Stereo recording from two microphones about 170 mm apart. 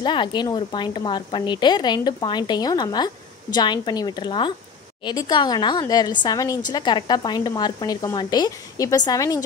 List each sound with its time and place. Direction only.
0.0 s speech: 25° left (ahead or behind)